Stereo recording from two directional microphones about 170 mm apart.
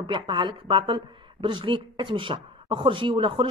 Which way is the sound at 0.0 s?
25° right (ahead or behind).